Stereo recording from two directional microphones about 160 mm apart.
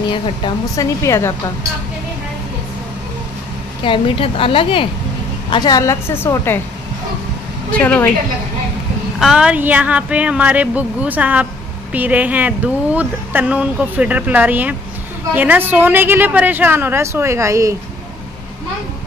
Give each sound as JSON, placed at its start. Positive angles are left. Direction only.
{"t": 0.7, "sound": "speech", "side_deg": 20}
{"t": 3.8, "sound": "a woman's voice", "side_deg": 30}
{"t": 7.7, "sound": "speech", "side_deg": 10}
{"t": 9.2, "sound": "speech", "side_deg": -5}